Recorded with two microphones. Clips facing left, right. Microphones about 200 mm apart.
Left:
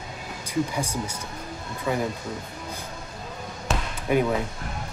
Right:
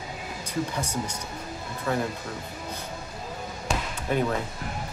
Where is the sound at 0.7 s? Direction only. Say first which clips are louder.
Left 1 dB; 10° left (ahead or behind).